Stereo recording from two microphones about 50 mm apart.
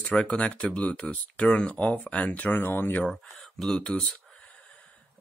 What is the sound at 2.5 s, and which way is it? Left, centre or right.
Speech, left.